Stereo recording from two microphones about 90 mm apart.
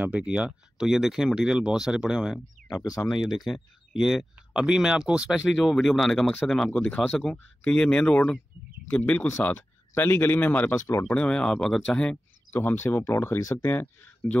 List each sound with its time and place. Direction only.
0.0 s speech: 15° right (ahead or behind)
2.7 s speech: 45° left (ahead or behind)
3.3 s speech: centre (ahead or behind)
12.5 s speech: 25° left (ahead or behind)
13.6 s speech: 25° left (ahead or behind)